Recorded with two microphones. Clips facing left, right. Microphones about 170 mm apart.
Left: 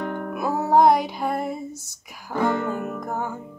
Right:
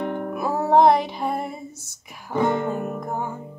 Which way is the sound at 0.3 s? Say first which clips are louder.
Right 1 dB; centre (ahead or behind).